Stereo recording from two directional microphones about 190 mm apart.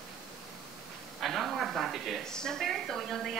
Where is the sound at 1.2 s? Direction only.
Centre (ahead or behind).